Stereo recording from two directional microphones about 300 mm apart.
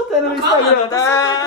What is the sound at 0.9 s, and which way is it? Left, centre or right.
Speech, centre.